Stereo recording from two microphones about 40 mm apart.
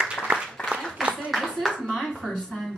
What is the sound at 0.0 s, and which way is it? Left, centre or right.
Applause, centre.